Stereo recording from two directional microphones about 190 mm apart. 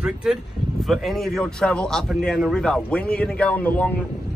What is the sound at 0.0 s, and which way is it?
Speech, 5° right (ahead or behind).